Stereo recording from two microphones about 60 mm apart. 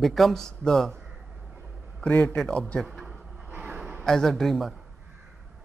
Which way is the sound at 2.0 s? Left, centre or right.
Left.